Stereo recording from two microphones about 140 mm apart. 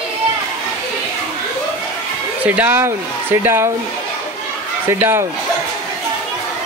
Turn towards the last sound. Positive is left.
turn(degrees=-15)  # may be behind; listen again after turning